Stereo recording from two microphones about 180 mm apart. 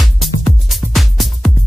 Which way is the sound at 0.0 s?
Centre (ahead or behind).